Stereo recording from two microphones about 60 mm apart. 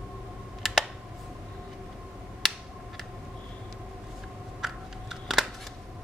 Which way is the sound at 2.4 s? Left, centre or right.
Centre.